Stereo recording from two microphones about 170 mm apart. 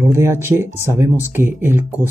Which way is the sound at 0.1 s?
15° right (ahead or behind).